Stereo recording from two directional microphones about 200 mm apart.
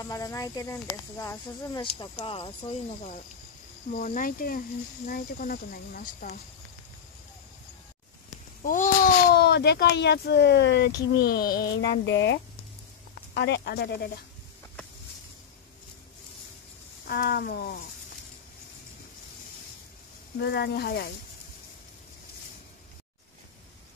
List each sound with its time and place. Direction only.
0.0 s speech: 15° left (ahead or behind); by 6.4 s 45° left (ahead or behind)
9.3 s speech: 55° left (ahead or behind)
17.0 s speech: 50° left (ahead or behind)
20.3 s speech: 55° left (ahead or behind)